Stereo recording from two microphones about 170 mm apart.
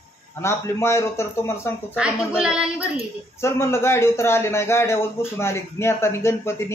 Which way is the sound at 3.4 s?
15° left (ahead or behind).